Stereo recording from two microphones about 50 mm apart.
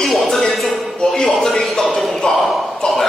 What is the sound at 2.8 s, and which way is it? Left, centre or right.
Speech, centre.